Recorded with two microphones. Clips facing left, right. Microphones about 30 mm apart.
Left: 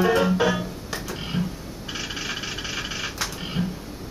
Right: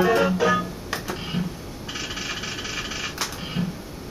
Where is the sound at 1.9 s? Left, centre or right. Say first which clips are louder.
Even; centre.